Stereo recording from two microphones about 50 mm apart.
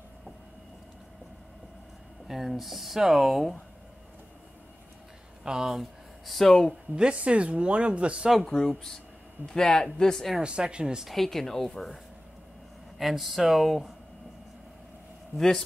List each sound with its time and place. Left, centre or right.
2.2 s speech: centre
5.4 s speech: centre
5.7 s speech: centre
6.4 s speech: centre
7.0 s speech: right
8.7 s speech: centre
10.3 s speech: centre
11.1 s speech: centre
15.3 s speech: centre